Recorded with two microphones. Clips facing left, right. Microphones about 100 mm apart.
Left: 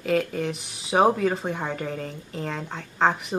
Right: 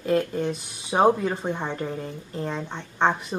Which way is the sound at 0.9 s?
Centre (ahead or behind).